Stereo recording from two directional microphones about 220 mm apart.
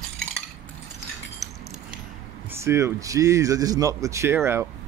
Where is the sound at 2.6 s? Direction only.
10° right (ahead or behind).